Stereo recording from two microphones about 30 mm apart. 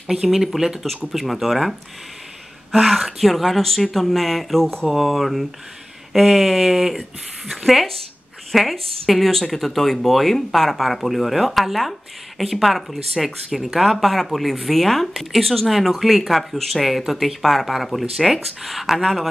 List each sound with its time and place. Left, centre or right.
0.1 s speech: centre
1.1 s speech: centre